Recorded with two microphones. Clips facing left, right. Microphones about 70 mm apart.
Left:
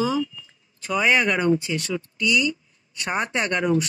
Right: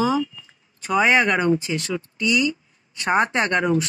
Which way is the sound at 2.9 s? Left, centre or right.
Right.